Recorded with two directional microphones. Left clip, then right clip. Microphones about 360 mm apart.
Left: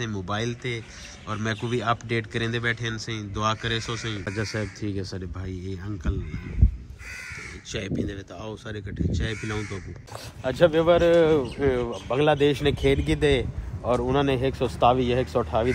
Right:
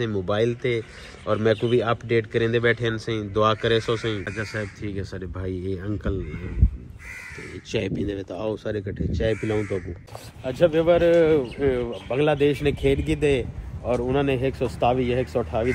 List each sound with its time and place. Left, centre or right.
0.0 s speech: centre
4.2 s speech: centre
7.7 s speech: centre
9.3 s speech: right
10.4 s speech: centre